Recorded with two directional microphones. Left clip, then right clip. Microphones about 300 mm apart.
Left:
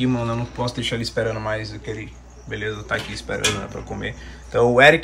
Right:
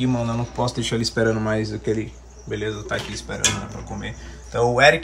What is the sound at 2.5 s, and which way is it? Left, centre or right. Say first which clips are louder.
Speech: left 1 dB; centre.